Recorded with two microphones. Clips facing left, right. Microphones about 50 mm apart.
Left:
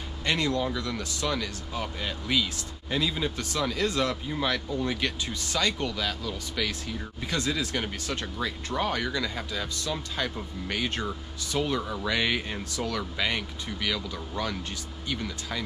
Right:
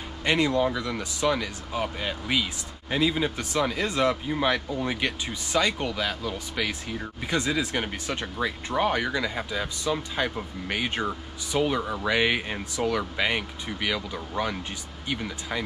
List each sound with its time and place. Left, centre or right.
0.2 s speech: centre